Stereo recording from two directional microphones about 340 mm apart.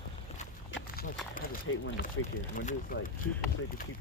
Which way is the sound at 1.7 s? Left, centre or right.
Left.